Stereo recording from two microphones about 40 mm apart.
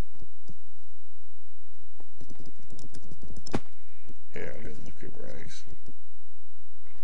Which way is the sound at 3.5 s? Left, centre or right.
Centre.